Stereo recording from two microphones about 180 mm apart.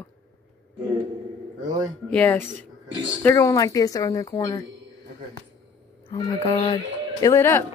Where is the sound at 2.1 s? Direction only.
10° left (ahead or behind).